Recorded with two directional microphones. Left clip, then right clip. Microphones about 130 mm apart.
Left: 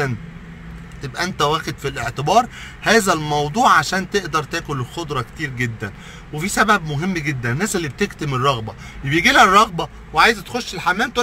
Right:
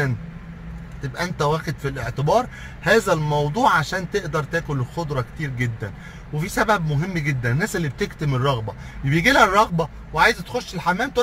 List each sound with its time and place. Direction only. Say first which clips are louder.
1.1 s speech: left 4 dB; 20° left (ahead or behind)